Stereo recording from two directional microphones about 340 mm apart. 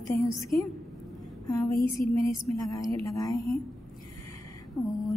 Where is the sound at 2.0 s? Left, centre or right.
Left.